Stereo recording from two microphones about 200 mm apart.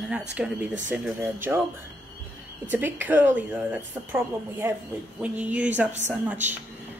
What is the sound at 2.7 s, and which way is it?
A woman's voice, 10° right (ahead or behind).